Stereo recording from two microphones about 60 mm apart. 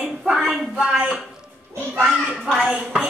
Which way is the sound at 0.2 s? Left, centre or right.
Centre.